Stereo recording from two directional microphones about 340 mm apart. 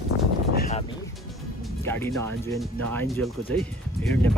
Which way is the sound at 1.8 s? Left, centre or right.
Centre.